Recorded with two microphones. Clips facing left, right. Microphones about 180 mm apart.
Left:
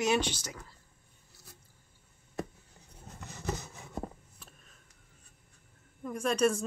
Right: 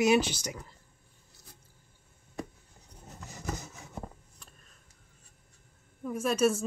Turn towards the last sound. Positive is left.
turn(degrees=-5)  # may be behind; listen again after turning